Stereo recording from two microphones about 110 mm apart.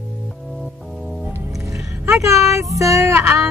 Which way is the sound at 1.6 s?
25° right (ahead or behind).